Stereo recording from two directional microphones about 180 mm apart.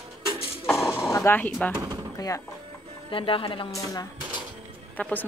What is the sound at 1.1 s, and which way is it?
Speech, 15° left (ahead or behind).